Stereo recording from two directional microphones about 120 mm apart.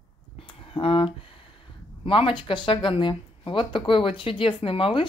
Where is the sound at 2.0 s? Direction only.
45° left (ahead or behind).